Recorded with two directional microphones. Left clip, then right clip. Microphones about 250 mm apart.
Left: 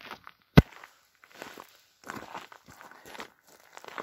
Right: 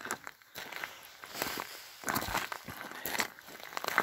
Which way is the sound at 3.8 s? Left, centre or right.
Right.